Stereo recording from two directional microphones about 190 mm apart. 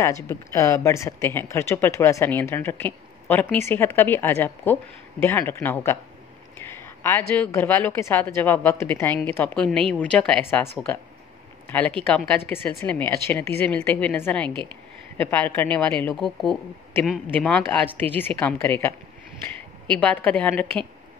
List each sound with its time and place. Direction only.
0.0 s speech: 15° left (ahead or behind)
11.6 s a sound: 10° left (ahead or behind)
12.0 s speech: 10° left (ahead or behind)
20.0 s speech: 5° left (ahead or behind)